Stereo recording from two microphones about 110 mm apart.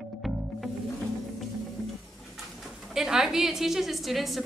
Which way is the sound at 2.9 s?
5° right (ahead or behind).